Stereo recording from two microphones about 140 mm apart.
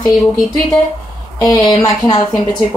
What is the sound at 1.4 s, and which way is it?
Speech, 25° left (ahead or behind).